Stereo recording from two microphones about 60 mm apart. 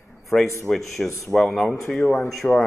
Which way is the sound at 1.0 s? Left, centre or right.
Left.